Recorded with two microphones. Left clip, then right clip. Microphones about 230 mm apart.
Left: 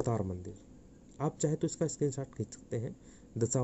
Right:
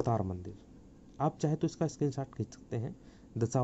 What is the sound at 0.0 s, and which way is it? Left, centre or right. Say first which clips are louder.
Speech: right 2 dB; centre.